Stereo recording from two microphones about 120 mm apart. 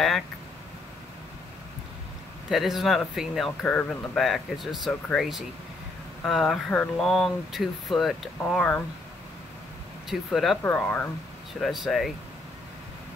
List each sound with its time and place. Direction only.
2.5 s speech: centre (ahead or behind)
10.0 s speech: centre (ahead or behind)
10.6 s speech: 10° left (ahead or behind)
11.6 s speech: centre (ahead or behind)